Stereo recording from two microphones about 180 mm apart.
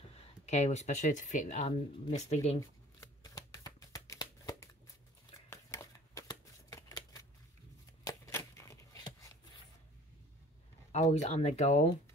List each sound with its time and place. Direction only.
0.1 s speech: 40° left (ahead or behind)
3.0 s shuffling cards: 20° left (ahead or behind)
5.5 s scissors: 15° left (ahead or behind)
8.0 s a sound: 15° left (ahead or behind)
10.9 s speech: 35° left (ahead or behind)